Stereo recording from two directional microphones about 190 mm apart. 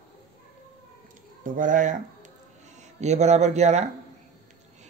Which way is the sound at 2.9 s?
35° right (ahead or behind).